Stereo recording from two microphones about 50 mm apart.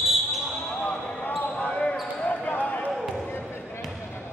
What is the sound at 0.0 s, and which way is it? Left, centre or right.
Basketball bounce, centre.